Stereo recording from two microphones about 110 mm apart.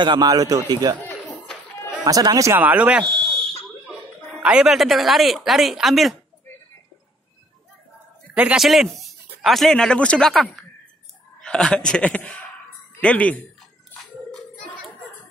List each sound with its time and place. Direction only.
0.0 s a man's voice: 40° right (ahead or behind)
2.0 s a man's voice: 35° right (ahead or behind)
2.6 s speech: 10° right (ahead or behind)
3.1 s fire alarm: 5° left (ahead or behind)
4.4 s speech: 10° right (ahead or behind)
8.4 s speech: 15° right (ahead or behind)
8.6 s a man's voice: centre (ahead or behind)